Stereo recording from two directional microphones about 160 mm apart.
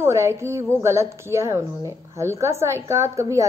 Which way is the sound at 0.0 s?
15° right (ahead or behind).